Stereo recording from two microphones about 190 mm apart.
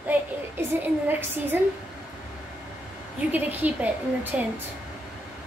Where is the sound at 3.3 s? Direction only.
10° right (ahead or behind).